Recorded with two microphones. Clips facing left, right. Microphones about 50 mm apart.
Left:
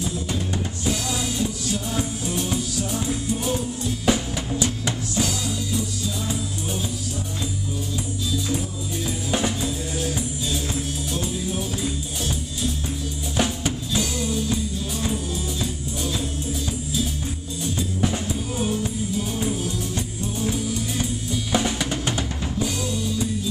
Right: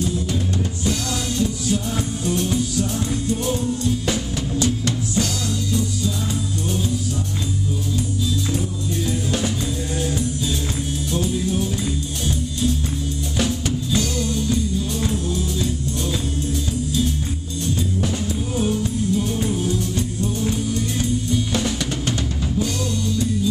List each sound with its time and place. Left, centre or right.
1.7 s music: centre
11.1 s music: centre
13.9 s music: centre
18.6 s music: centre
20.4 s music: centre
21.5 s drum: centre
22.6 s music: centre